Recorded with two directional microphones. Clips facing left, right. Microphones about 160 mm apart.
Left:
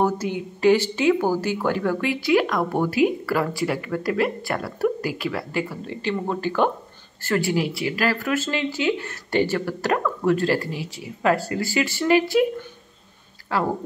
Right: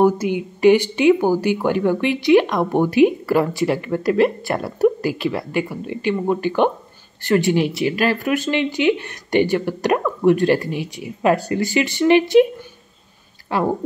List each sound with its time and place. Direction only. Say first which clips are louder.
0.0 s speech: right 6 dB; 15° right (ahead or behind)
13.5 s speech: right 3 dB; 20° right (ahead or behind)